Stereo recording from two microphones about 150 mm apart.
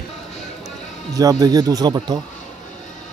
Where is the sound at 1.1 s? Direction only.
25° right (ahead or behind).